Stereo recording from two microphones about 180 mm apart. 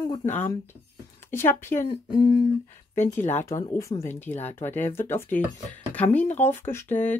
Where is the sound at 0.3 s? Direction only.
10° left (ahead or behind).